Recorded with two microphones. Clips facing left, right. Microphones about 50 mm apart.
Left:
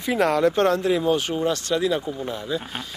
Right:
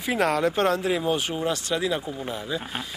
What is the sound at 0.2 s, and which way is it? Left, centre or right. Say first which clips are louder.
Speech: left 3 dB; centre.